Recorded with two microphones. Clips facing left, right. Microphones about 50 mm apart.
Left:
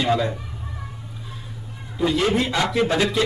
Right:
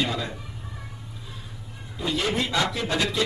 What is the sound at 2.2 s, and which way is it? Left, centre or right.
Speech, left.